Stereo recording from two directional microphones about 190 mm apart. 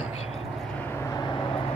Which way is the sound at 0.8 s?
10° left (ahead or behind).